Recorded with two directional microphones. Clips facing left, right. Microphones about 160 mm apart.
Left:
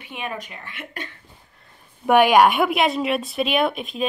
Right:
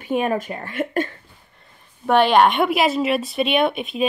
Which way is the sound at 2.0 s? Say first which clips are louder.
Even; 10° left (ahead or behind).